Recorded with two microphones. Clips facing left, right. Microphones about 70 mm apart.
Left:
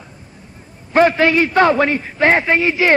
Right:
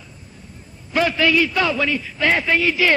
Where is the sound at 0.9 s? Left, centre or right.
Left.